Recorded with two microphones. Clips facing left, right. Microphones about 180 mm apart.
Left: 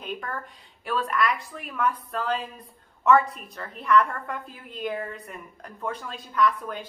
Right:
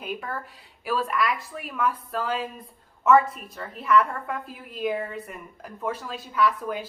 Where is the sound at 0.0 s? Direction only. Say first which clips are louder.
Right 1 dB; 5° right (ahead or behind).